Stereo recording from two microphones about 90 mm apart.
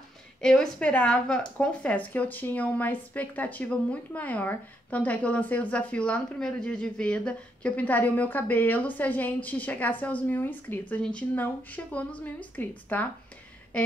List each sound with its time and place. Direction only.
0.4 s speech: 10° left (ahead or behind)